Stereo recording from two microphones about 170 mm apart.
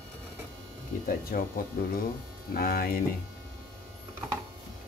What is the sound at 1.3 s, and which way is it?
Speech, 60° left (ahead or behind).